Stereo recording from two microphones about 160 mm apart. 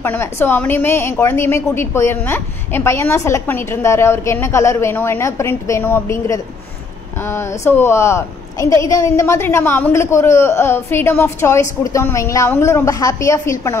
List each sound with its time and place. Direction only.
0.0 s a woman's voice: 15° left (ahead or behind)